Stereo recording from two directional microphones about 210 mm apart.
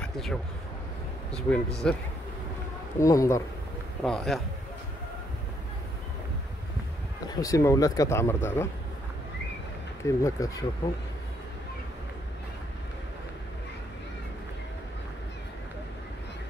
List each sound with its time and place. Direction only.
0.0 s a sound: 5° left (ahead or behind)
1.3 s a man's voice: 5° left (ahead or behind)
3.0 s speech: 15° left (ahead or behind)
4.0 s a man's voice: centre (ahead or behind)
7.2 s speech: 15° left (ahead or behind)
10.0 s speech: 15° left (ahead or behind)